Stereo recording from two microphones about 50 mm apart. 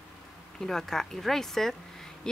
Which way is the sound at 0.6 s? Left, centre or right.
Centre.